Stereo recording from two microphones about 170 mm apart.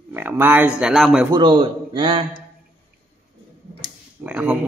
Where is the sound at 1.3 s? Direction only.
30° right (ahead or behind).